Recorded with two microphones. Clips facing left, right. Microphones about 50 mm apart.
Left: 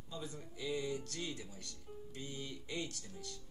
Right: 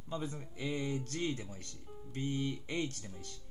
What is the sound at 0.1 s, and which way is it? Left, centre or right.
Speech, right.